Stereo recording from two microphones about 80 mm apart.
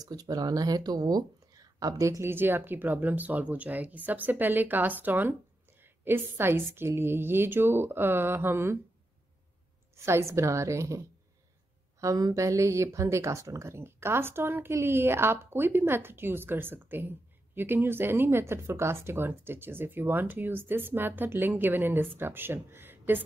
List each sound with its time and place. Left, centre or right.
0.0 s speech: right
2.2 s speech: right
9.9 s speech: right